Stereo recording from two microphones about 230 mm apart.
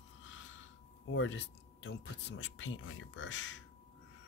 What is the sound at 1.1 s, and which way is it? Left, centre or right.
Speech, left.